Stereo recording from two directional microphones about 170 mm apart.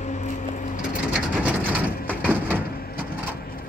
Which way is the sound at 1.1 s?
10° right (ahead or behind).